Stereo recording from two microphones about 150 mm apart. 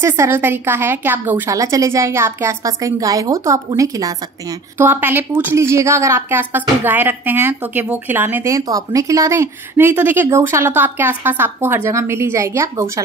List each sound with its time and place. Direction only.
0.0 s a woman's voice: 15° right (ahead or behind)